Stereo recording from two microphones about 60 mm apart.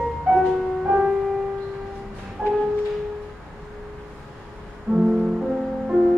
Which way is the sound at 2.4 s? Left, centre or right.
Centre.